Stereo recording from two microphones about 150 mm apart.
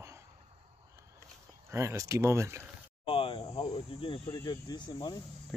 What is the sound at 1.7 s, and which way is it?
Speech, 20° right (ahead or behind).